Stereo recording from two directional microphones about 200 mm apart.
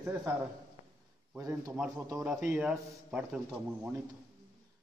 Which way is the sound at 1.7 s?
5° right (ahead or behind).